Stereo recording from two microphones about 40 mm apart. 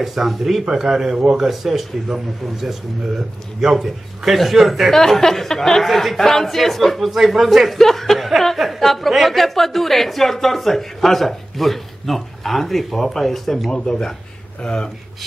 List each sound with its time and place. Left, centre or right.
0.0 s a woman's voice: centre
4.9 s a woman's voice: centre
13.7 s speech: centre